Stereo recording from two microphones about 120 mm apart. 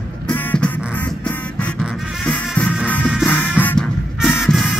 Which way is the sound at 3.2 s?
15° left (ahead or behind).